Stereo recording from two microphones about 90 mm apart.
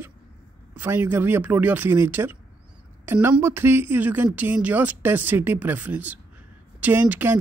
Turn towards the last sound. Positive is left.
turn(degrees=-20)  # may be behind; listen again after turning